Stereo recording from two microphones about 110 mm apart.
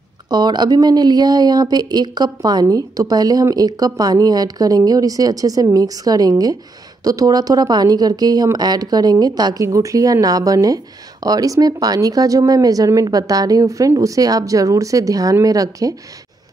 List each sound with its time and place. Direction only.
0.3 s speech: 40° right (ahead or behind)